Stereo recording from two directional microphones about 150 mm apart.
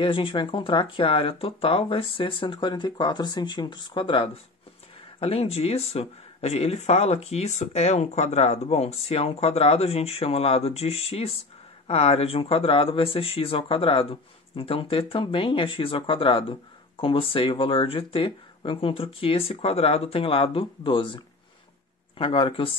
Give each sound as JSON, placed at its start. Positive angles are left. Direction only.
{"t": 0.0, "sound": "speech", "side_deg": 35}
{"t": 22.2, "sound": "speech", "side_deg": 35}